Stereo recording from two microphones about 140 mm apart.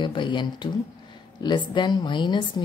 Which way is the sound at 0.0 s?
35° left (ahead or behind).